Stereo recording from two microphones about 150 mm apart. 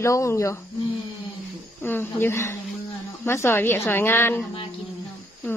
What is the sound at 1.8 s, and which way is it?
A woman's voice, 15° left (ahead or behind).